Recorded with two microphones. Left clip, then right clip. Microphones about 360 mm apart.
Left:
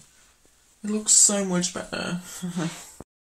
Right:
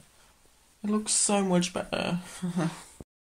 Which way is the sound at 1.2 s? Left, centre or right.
Centre.